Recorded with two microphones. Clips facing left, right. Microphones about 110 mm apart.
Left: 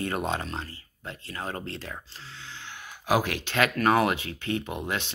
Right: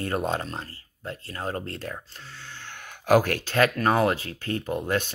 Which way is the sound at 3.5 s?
35° right (ahead or behind).